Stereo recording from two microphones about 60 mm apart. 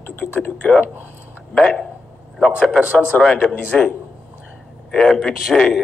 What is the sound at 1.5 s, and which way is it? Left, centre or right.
Speech, centre.